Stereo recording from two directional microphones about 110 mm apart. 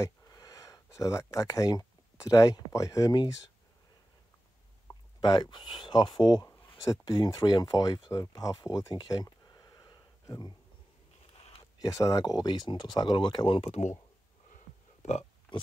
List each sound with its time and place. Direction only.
0.0 s speech: 35° left (ahead or behind)
4.9 s a sound: 35° left (ahead or behind)
5.2 s speech: 40° left (ahead or behind)
11.8 s speech: 30° left (ahead or behind)
13.6 s speech: 80° left
15.0 s a sound: 80° left